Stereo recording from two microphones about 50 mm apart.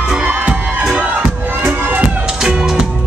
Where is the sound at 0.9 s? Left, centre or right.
Right.